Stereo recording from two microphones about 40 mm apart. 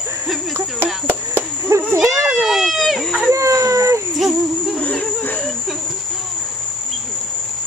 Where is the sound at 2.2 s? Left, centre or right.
Centre.